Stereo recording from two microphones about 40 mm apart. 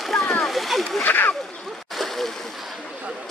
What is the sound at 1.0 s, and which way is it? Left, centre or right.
Speech, left.